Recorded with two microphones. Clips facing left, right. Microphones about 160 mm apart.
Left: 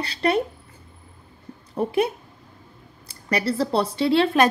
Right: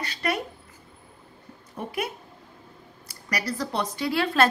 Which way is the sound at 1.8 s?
30° left (ahead or behind).